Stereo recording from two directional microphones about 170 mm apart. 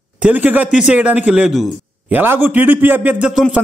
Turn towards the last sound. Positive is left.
turn(degrees=-5)  # may be behind; listen again after turning